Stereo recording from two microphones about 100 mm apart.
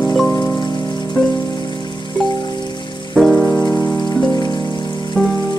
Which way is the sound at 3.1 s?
5° left (ahead or behind).